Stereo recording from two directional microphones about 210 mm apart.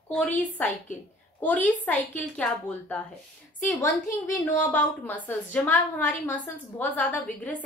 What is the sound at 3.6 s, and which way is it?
A woman's voice, 15° left (ahead or behind).